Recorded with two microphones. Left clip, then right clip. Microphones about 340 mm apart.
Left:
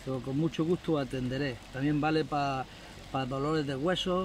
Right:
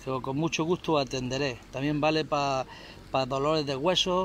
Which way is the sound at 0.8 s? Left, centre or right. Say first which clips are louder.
Right 4 dB; centre.